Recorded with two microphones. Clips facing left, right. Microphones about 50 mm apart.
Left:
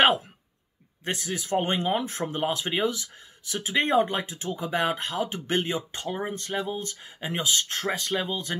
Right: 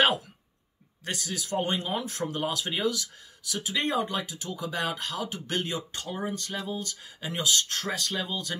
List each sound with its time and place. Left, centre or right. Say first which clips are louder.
1.0 s speech: left 3 dB; left